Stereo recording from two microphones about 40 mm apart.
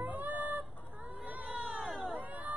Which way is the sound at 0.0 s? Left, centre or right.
Right.